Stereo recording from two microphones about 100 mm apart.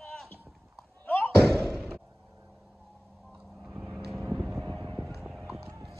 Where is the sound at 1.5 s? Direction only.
Centre (ahead or behind).